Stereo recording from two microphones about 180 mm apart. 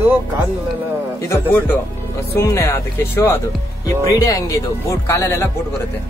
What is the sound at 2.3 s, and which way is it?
Speech, 15° left (ahead or behind).